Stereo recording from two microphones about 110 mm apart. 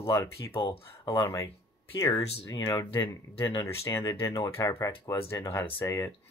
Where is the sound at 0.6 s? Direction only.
40° left (ahead or behind).